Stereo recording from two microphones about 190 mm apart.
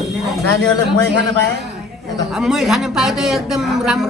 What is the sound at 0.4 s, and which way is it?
Speech, 60° right (ahead or behind).